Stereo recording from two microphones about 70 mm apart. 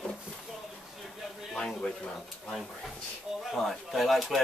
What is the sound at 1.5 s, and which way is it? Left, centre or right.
Speech, centre.